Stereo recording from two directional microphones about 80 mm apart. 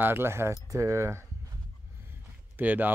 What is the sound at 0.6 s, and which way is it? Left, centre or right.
Speech, right.